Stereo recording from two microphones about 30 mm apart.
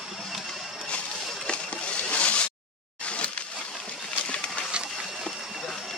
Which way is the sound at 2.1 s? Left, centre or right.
Left.